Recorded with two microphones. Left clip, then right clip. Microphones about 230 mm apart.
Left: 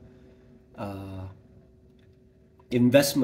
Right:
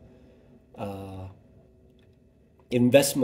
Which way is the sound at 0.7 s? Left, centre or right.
Centre.